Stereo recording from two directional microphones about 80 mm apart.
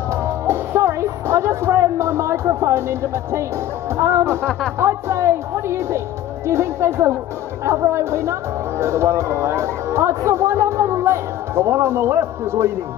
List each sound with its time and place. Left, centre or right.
0.5 s music: right
3.9 s speech: right